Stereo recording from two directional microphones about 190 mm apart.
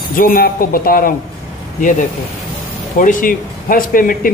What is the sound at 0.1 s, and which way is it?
Speech, 50° left (ahead or behind).